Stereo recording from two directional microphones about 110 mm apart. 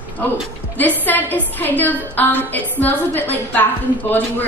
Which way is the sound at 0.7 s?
15° left (ahead or behind).